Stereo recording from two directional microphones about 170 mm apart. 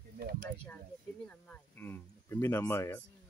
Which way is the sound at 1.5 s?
10° left (ahead or behind).